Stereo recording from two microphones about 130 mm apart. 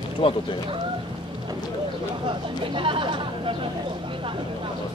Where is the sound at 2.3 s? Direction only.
40° right (ahead or behind).